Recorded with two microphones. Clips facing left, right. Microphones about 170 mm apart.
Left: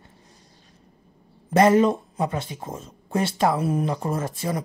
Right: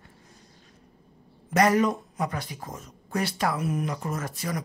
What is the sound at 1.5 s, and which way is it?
Speech, 25° left (ahead or behind).